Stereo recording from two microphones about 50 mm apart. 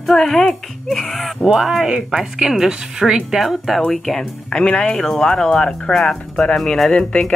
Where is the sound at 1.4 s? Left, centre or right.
Centre.